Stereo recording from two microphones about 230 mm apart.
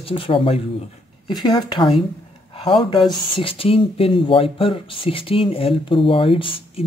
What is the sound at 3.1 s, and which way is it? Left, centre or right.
Speech, left.